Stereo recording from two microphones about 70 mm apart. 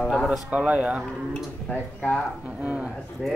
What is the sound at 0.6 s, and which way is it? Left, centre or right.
Speech, centre.